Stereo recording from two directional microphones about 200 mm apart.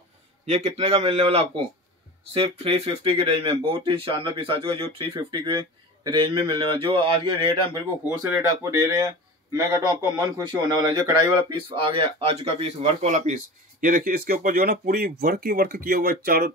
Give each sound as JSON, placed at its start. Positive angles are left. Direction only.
{"t": 0.5, "sound": "a man's voice", "side_deg": -30}
{"t": 8.1, "sound": "speech", "side_deg": -15}